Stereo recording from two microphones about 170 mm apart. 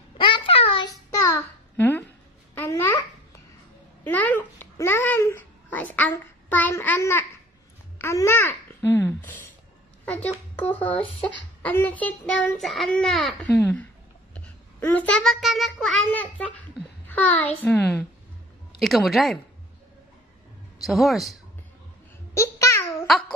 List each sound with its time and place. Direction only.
0.2 s a sound: 30° left (ahead or behind)
1.1 s babbling: 10° left (ahead or behind)
4.0 s babbling: 10° left (ahead or behind)
10.8 s a child's voice: 10° left (ahead or behind)
14.3 s child singing: 10° left (ahead or behind)
17.1 s a sound: 10° left (ahead or behind)
17.6 s a child's voice: 10° left (ahead or behind)
20.8 s a woman's voice: centre (ahead or behind)
22.3 s babbling: 15° left (ahead or behind)
23.0 s babbling: centre (ahead or behind)